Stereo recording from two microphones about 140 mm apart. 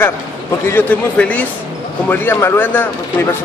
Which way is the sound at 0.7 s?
10° left (ahead or behind).